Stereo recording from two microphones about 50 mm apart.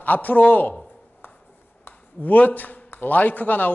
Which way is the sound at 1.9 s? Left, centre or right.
Left.